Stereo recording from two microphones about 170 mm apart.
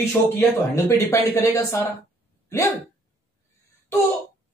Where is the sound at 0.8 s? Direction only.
15° left (ahead or behind).